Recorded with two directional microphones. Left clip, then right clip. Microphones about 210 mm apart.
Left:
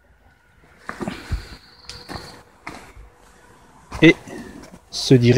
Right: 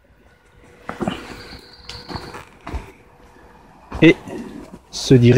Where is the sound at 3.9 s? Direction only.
5° right (ahead or behind).